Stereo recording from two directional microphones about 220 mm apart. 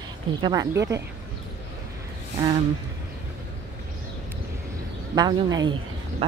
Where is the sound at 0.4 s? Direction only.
15° right (ahead or behind).